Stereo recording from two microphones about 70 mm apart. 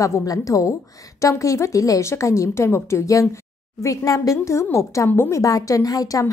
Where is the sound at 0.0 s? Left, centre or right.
Left.